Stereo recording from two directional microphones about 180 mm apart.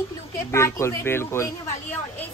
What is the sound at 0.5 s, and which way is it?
Speech, 15° left (ahead or behind).